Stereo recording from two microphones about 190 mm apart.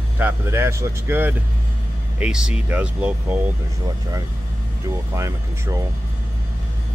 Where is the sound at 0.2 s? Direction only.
15° right (ahead or behind).